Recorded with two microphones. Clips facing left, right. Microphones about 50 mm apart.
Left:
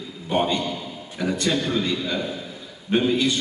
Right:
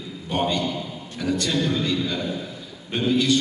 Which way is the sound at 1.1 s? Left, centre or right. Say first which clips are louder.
Even; left.